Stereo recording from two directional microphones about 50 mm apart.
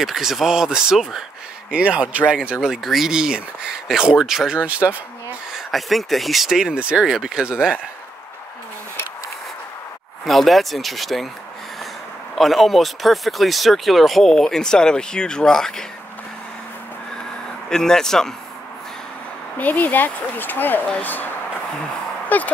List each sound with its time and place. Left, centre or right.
0.0 s speech: centre
1.7 s speech: right
2.7 s speech: centre
4.6 s speech: right
5.5 s speech: centre
6.7 s speech: centre
7.1 s speech: centre
10.2 s speech: centre
12.4 s speech: centre
17.6 s speech: centre
19.6 s speech: left
22.3 s speech: left